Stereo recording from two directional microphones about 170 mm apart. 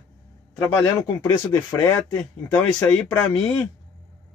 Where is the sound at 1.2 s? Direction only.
15° left (ahead or behind).